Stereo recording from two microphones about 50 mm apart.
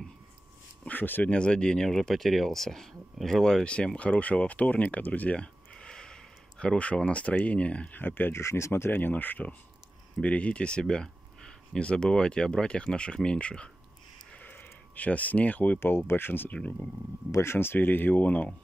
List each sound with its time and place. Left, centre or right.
0.8 s speech: left
1.3 s speech: centre
3.6 s speech: centre
4.9 s a sound: left; by 6.1 s centre
6.6 s speech: left
8.0 s speech: left
8.3 s speech: left
8.9 s speech: left
14.4 s a sound: left
15.8 s speech: left
17.3 s speech: left